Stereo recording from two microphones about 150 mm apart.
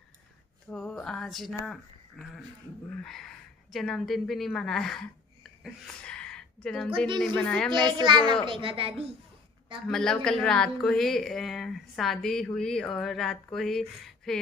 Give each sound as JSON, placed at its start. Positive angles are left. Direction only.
{"t": 0.7, "sound": "a sound", "side_deg": 5}
{"t": 1.7, "sound": "a woman's voice", "side_deg": 0}
{"t": 7.7, "sound": "a child's voice", "side_deg": -30}
{"t": 9.8, "sound": "speech", "side_deg": 5}